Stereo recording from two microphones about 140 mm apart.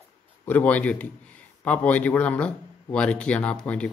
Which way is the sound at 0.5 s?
10° left (ahead or behind).